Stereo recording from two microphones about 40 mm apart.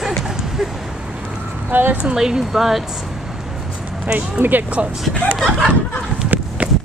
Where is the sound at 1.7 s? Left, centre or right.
Right.